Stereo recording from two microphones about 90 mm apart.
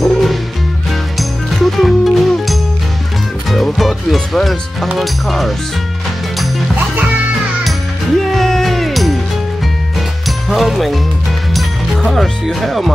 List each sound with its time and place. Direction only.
0.0 s music: centre (ahead or behind)
1.5 s music: centre (ahead or behind)
3.7 s music: centre (ahead or behind)
4.9 s speech: centre (ahead or behind)
8.3 s music: 5° left (ahead or behind)
10.2 s music: centre (ahead or behind)
12.0 s speech: centre (ahead or behind)